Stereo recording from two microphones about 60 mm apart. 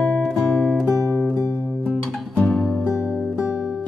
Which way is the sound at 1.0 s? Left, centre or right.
Left.